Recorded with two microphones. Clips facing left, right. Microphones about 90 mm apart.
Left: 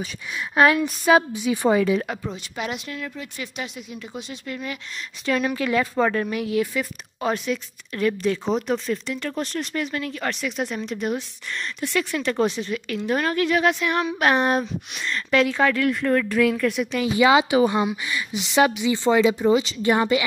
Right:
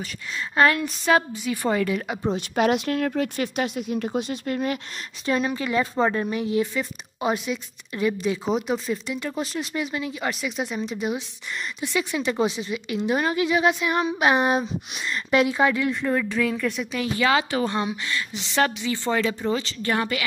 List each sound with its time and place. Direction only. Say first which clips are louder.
0.6 s a woman's voice: left 2 dB; 10° left (ahead or behind)
2.3 s speech: right 9 dB; 60° right (ahead or behind); by 4.7 s 45° right (ahead or behind)
5.2 s speech: left 1 dB; 25° right (ahead or behind)
6.7 s speech: left 1 dB; centre (ahead or behind)
16.3 s speech: left 4 dB; centre (ahead or behind)
17.1 s a woman's voice: left 5 dB; 15° left (ahead or behind)